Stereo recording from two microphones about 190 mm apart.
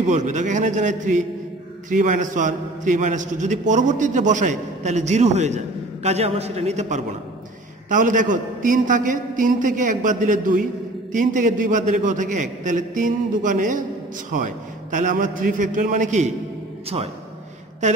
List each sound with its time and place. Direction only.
0.0 s a man's voice: 40° right (ahead or behind)
16.9 s a man's voice: 30° right (ahead or behind)